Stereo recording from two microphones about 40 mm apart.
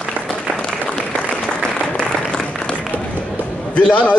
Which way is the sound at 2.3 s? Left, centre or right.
Left.